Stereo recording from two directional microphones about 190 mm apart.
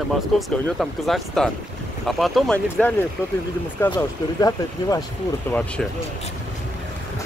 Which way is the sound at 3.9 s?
20° left (ahead or behind).